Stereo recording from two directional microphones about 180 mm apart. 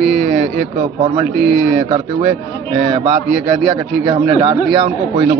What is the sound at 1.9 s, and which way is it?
A man's voice, 30° right (ahead or behind).